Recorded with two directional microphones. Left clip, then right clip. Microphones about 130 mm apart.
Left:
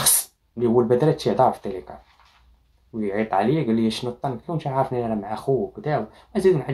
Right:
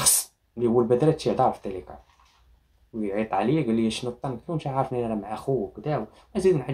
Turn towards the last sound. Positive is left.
turn(degrees=-15)  # may be behind; listen again after turning